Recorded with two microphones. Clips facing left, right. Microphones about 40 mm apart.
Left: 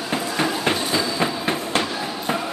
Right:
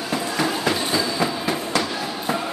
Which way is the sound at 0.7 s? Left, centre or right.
Left.